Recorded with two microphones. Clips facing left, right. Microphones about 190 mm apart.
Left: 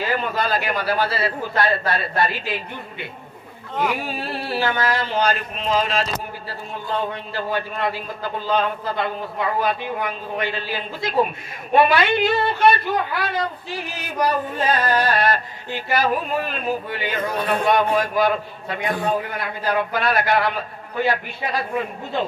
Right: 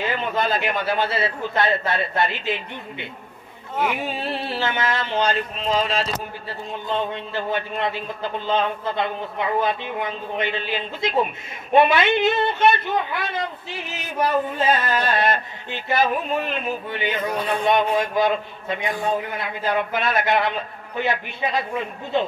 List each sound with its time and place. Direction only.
0.0 s a man's voice: 20° right (ahead or behind)